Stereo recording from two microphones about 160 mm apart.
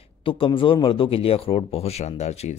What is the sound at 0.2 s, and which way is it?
Speech, 30° left (ahead or behind).